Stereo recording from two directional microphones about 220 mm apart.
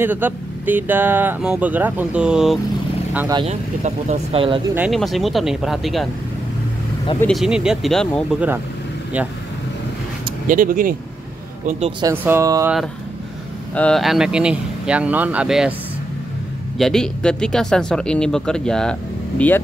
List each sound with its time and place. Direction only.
0.0 s speech: 10° right (ahead or behind)
3.3 s speech: 30° right (ahead or behind)
4.7 s speech: centre (ahead or behind)
7.2 s speech: centre (ahead or behind)
10.4 s speech: 40° right (ahead or behind)
12.0 s speech: 10° right (ahead or behind)
13.7 s speech: 5° left (ahead or behind)
16.7 s speech: centre (ahead or behind)